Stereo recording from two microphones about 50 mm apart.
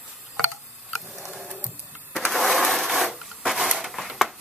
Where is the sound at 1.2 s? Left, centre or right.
Centre.